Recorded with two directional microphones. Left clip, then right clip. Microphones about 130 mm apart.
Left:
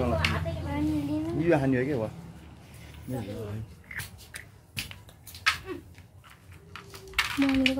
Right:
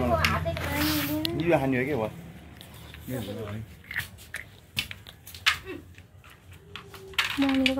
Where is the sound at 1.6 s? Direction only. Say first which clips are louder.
Right 1 dB; 25° left (ahead or behind).